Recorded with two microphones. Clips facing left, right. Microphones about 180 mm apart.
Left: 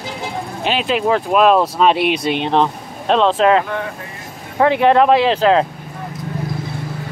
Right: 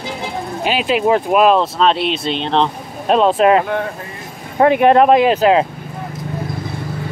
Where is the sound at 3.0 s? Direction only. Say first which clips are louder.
Right 1 dB; 10° right (ahead or behind).